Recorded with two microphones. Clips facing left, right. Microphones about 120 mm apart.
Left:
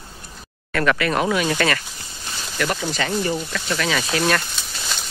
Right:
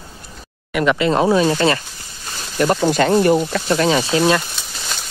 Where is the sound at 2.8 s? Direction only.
55° right (ahead or behind); by 4.0 s 35° right (ahead or behind).